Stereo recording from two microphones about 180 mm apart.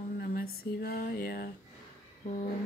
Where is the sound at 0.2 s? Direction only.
55° left (ahead or behind).